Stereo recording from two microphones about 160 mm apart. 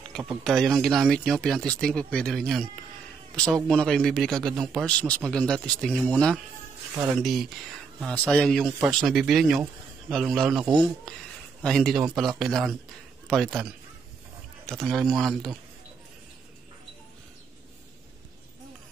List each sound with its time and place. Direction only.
0.3 s speech: centre (ahead or behind)
3.6 s speech: 5° left (ahead or behind)
14.7 s speech: centre (ahead or behind)